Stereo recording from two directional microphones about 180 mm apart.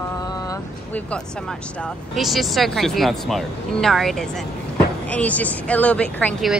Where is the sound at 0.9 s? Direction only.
5° left (ahead or behind).